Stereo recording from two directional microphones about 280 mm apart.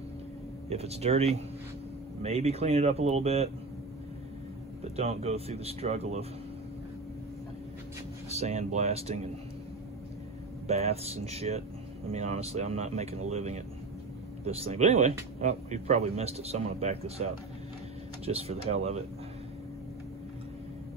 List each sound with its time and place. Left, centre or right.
0.7 s speech: right
4.8 s speech: right
8.3 s speech: right
10.7 s speech: right